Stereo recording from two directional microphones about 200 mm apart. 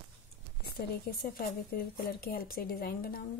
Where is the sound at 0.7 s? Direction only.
50° left (ahead or behind).